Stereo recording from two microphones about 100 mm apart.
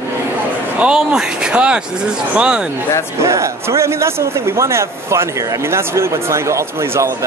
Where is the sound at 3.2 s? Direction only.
30° right (ahead or behind).